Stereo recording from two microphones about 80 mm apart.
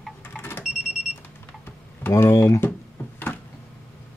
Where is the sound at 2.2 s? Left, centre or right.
Left.